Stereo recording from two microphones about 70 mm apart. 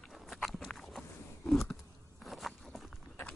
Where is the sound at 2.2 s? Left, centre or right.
Centre.